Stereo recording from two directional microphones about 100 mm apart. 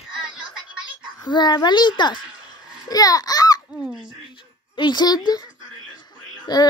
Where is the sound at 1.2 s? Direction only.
45° left (ahead or behind).